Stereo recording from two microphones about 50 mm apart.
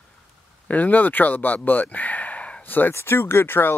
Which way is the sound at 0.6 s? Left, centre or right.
Left.